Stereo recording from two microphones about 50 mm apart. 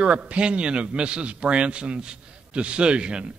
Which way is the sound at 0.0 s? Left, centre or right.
Right.